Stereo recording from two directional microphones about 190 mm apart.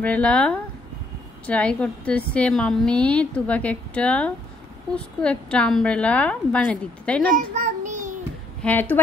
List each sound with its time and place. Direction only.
0.0 s a woman's voice: 5° left (ahead or behind)
7.3 s child singing: 45° right (ahead or behind)
8.6 s a woman's voice: 10° left (ahead or behind)